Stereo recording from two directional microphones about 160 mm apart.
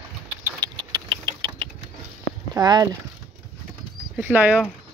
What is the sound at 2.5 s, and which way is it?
Speech, 25° right (ahead or behind).